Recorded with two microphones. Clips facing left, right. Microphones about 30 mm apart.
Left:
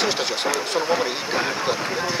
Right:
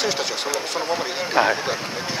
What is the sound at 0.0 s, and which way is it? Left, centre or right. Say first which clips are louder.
Speech: left 1 dB; centre.